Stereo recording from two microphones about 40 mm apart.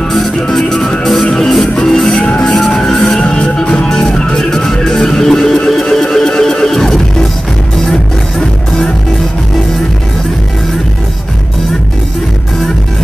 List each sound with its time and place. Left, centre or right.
0.1 s music: centre
2.1 s music: left
2.4 s music: centre
3.2 s music: left